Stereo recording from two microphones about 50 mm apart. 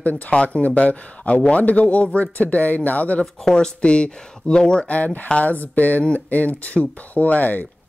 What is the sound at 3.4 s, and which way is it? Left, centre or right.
Speech, centre.